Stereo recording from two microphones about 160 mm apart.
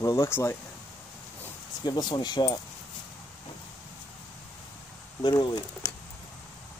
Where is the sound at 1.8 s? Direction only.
25° left (ahead or behind).